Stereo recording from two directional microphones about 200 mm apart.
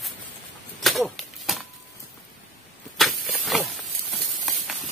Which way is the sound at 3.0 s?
Centre (ahead or behind).